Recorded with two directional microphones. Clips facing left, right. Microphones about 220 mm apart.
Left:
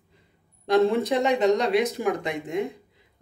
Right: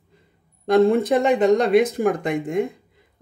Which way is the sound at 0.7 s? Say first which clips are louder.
Right 4 dB; 50° right (ahead or behind).